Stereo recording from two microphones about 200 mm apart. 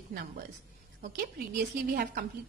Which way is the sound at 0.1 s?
45° right (ahead or behind).